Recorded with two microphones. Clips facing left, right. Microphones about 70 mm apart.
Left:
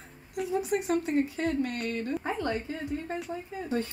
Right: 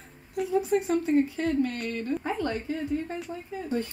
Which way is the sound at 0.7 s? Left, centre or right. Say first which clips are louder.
Right 3 dB; left.